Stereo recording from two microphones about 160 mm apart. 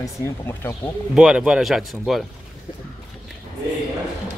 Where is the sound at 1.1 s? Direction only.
5° right (ahead or behind).